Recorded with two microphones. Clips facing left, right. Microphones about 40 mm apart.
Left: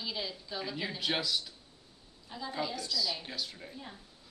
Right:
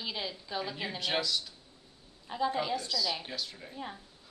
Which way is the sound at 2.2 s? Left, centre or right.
Right.